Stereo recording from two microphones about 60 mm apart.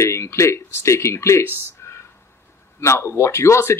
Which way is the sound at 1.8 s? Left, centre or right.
Left.